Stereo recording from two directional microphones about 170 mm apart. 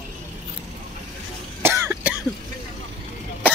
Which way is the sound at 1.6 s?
15° right (ahead or behind).